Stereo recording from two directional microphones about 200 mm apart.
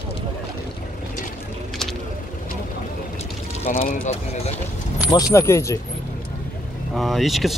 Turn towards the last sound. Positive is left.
turn(degrees=0)  # may be behind; listen again after turning